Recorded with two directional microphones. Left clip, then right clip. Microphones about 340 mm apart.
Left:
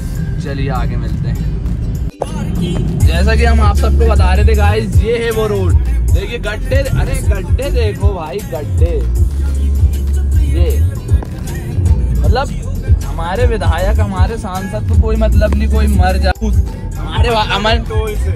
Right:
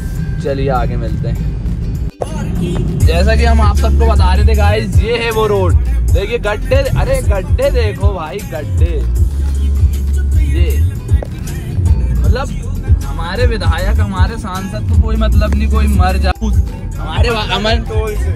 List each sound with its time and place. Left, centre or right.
0.4 s speech: centre
3.0 s speech: centre
8.0 s speech: right
13.2 s speech: centre